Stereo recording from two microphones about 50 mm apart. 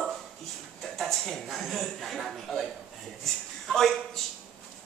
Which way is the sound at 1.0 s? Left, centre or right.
Centre.